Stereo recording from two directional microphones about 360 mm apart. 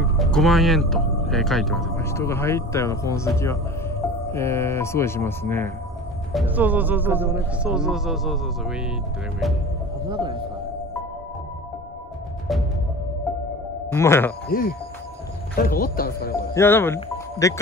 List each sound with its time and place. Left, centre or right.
0.2 s speech: centre
6.3 s speech: centre
10.0 s speech: centre
13.9 s speech: centre
15.5 s speech: left
16.5 s speech: centre